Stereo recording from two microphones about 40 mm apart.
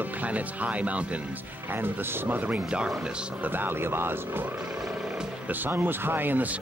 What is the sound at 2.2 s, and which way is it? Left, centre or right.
A man's voice, right.